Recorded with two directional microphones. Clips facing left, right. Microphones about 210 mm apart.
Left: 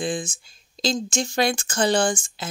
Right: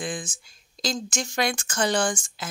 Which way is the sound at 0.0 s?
25° left (ahead or behind).